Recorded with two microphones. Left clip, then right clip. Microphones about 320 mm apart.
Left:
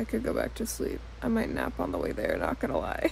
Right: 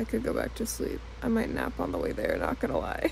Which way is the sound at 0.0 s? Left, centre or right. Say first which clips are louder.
Even; centre.